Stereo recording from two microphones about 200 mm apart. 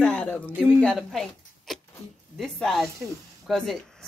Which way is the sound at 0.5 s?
5° right (ahead or behind).